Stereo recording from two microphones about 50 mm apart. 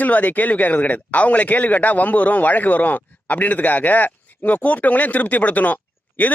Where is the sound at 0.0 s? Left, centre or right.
Left.